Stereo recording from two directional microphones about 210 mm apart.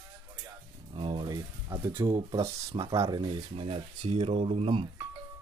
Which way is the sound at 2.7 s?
20° right (ahead or behind).